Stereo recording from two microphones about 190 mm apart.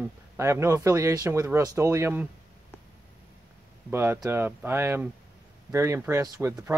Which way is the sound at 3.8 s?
10° right (ahead or behind).